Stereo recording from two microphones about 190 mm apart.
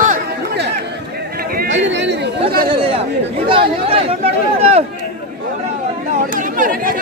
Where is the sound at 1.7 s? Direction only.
70° right (ahead or behind).